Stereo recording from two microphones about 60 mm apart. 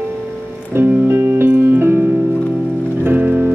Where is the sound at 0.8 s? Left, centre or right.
Right.